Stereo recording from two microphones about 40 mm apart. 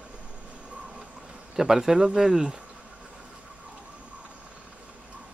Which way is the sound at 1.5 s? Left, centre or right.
Centre.